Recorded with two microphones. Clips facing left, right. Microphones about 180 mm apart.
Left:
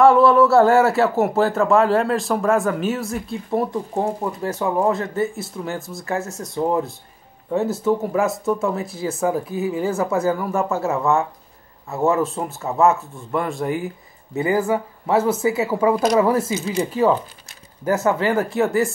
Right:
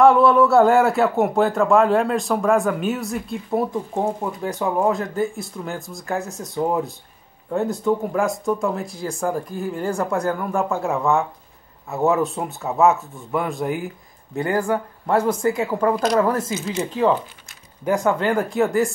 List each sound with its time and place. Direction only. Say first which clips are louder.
0.0 s speech: left 1 dB; centre (ahead or behind)